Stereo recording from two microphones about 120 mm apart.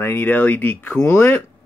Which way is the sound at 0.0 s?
15° left (ahead or behind).